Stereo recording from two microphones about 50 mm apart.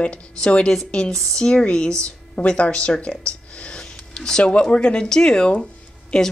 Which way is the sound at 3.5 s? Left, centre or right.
Centre.